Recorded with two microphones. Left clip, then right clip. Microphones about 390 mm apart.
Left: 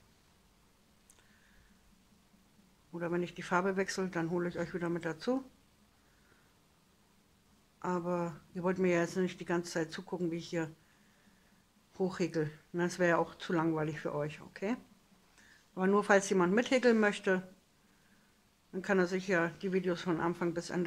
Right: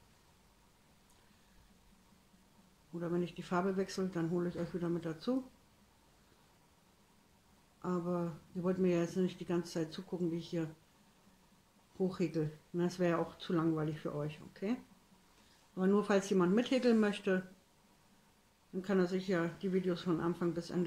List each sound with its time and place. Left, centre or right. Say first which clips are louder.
3.0 s speech: left 2 dB; centre
7.8 s speech: left 3 dB; centre
12.1 s speech: left 2 dB; centre
18.8 s speech: left 3 dB; centre